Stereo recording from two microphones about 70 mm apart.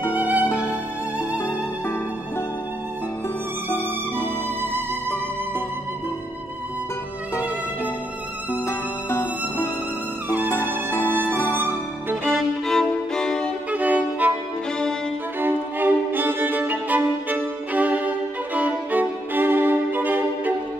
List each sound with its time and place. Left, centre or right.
0.1 s music: right
3.6 s music: left
8.6 s music: left
10.9 s music: left
11.5 s music: right
12.3 s music: centre
13.7 s violin: right
15.4 s music: right